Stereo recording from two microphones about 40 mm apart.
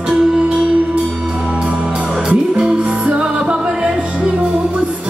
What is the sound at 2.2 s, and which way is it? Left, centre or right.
Music, right.